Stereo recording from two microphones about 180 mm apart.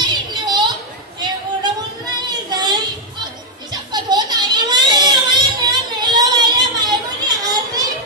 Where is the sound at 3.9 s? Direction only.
25° right (ahead or behind).